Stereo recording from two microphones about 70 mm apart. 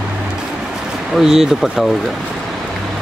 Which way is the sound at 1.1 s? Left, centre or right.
Centre.